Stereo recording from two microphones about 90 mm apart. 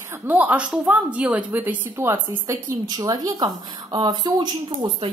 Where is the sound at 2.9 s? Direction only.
50° right (ahead or behind).